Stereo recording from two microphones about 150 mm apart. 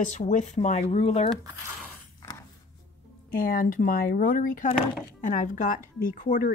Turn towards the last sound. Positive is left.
turn(degrees=60)  # may be behind; listen again after turning